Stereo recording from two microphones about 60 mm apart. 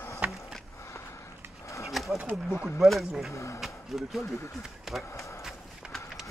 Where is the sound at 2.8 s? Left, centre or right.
Centre.